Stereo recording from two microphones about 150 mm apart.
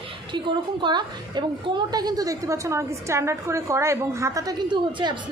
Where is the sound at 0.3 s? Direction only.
30° right (ahead or behind).